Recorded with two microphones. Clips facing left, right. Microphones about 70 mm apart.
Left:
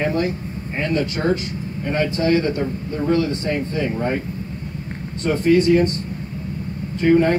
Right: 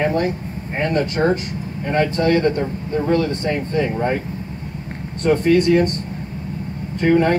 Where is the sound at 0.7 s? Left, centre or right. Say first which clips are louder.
Right 3 dB; right.